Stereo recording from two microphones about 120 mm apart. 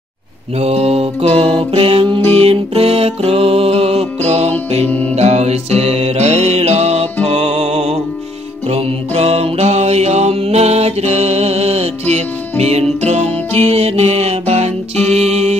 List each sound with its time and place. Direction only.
0.6 s music: 65° right (ahead or behind)
4.8 s music: 15° left (ahead or behind)
5.1 s music: 65° right (ahead or behind)
13.6 s music: 55° right (ahead or behind)
15.0 s music: centre (ahead or behind)
15.2 s music: 65° right (ahead or behind)